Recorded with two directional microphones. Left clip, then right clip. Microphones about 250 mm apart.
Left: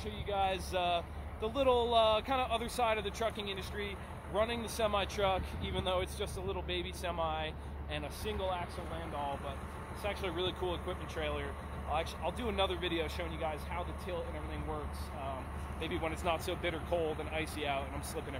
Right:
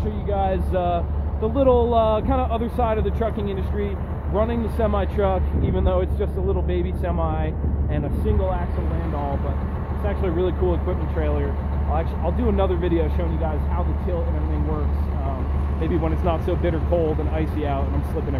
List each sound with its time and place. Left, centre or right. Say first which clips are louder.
0.3 s speech: right 10 dB; centre
10.0 s speech: right 12 dB; centre
15.8 s speech: right 12 dB; centre
16.9 s speech: right 13 dB; left
17.4 s speech: right 10 dB; centre